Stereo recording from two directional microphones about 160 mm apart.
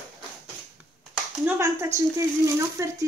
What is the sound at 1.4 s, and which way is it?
A woman's voice, 15° right (ahead or behind).